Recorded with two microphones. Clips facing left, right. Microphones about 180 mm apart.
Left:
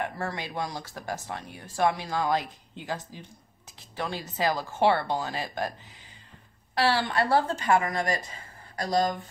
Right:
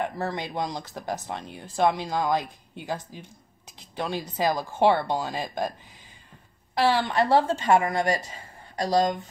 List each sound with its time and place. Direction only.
0.0 s speech: 15° right (ahead or behind)
6.8 s a woman's voice: 15° right (ahead or behind)